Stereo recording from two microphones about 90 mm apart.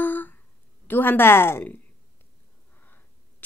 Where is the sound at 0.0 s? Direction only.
20° left (ahead or behind).